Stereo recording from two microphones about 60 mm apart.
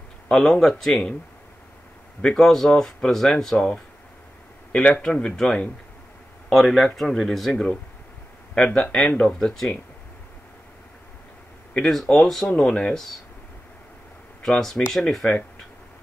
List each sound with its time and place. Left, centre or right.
0.3 s speech: centre
2.2 s speech: centre
5.0 s speech: centre
6.5 s speech: centre
11.8 s speech: centre
14.4 s speech: centre